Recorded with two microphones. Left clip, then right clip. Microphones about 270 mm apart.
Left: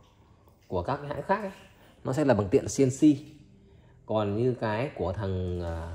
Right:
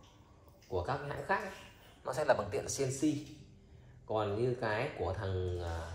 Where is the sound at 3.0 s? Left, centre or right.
Centre.